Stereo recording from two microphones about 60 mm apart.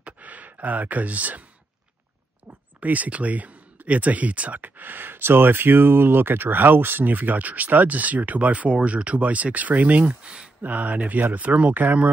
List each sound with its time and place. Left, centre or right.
0.0 s sigh: right
2.8 s speech: right
10.0 s speech: centre
10.6 s speech: right